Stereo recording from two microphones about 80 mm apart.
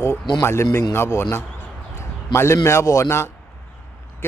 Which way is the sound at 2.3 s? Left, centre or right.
Left.